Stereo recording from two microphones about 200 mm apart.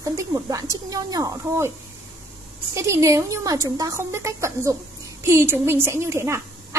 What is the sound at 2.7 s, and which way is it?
A woman's voice, 15° right (ahead or behind).